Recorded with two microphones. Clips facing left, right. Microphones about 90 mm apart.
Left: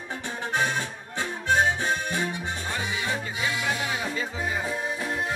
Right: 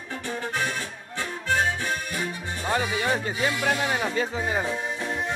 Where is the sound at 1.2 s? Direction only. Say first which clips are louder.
Left 2 dB; 20° left (ahead or behind).